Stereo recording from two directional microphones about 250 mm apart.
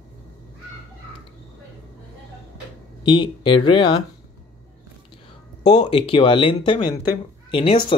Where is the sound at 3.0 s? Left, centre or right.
Centre.